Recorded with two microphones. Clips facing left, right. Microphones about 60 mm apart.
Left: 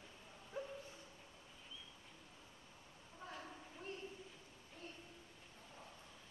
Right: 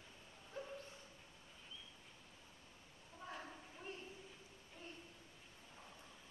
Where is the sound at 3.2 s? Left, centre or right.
Centre.